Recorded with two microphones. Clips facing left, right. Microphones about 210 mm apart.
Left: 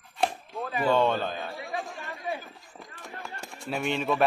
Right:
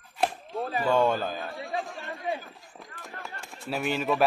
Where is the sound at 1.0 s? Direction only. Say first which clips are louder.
Right 1 dB; 10° right (ahead or behind).